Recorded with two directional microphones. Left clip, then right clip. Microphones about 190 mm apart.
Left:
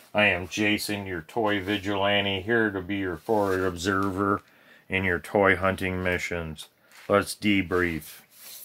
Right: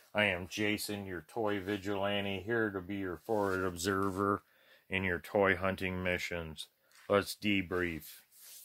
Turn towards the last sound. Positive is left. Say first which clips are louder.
# left 9 dB
turn(degrees=-35)  # may be behind; listen again after turning